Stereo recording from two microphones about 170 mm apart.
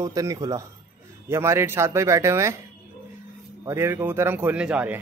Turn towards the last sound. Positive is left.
turn(degrees=-10)  # may be behind; listen again after turning